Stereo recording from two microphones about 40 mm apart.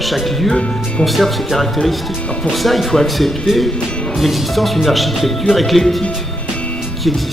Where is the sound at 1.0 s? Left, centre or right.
Centre.